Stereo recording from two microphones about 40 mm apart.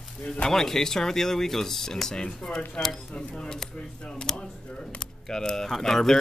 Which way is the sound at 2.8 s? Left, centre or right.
Left.